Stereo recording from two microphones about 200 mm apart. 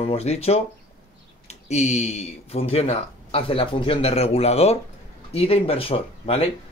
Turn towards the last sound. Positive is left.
turn(degrees=30)  # may be behind; listen again after turning